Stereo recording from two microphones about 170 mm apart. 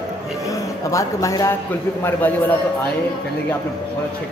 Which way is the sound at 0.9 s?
20° left (ahead or behind).